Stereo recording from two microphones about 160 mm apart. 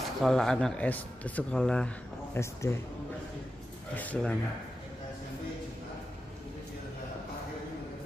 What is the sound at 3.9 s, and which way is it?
Speech, 10° left (ahead or behind).